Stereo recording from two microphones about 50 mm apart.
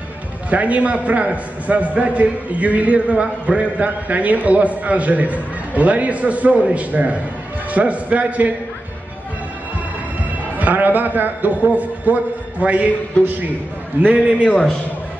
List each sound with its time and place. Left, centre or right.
0.5 s a man's voice: right
10.6 s a man's voice: right
14.0 s a man's voice: right
14.4 s a man's voice: left